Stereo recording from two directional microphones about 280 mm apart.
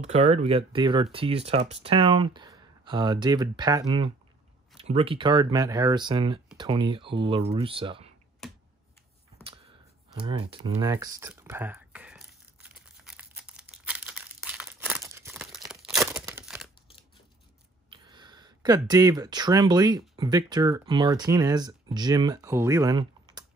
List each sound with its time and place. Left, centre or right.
0.0 s speech: right
8.4 s computer keyboard: centre
10.2 s a sound: centre
17.8 s speech: centre